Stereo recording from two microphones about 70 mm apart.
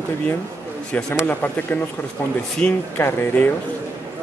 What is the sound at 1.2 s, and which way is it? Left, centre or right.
Speech, left.